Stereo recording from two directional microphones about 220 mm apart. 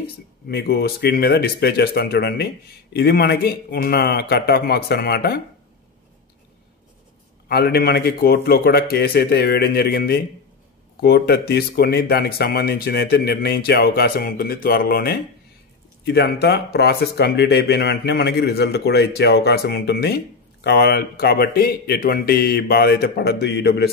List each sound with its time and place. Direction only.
0.0 s speech: 45° left (ahead or behind)
7.4 s speech: 45° left (ahead or behind)